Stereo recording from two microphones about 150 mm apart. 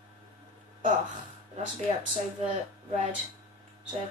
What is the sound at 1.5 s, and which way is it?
Speech, 55° right (ahead or behind).